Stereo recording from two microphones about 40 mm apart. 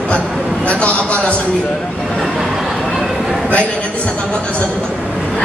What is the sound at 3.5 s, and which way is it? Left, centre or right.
A man's voice, left.